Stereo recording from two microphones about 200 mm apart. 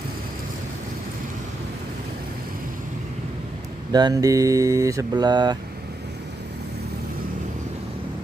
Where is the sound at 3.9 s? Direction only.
20° right (ahead or behind).